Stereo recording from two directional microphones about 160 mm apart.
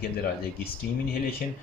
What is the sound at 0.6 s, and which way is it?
Speech, 70° left (ahead or behind).